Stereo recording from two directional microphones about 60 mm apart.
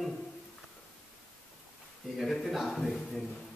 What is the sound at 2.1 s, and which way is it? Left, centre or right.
A man's voice, centre.